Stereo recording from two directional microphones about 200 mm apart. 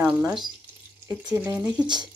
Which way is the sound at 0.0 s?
5° right (ahead or behind).